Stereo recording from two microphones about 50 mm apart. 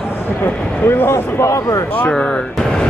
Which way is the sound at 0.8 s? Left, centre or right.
Left.